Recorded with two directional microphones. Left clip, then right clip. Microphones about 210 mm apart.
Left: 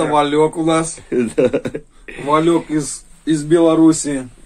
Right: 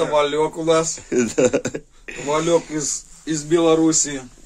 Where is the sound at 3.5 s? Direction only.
20° left (ahead or behind).